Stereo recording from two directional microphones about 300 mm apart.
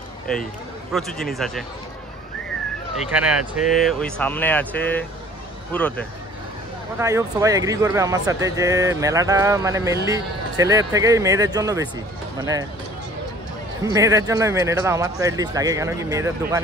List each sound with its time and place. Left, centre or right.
0.3 s speech: centre
3.1 s speech: centre
7.0 s speech: centre
13.8 s speech: centre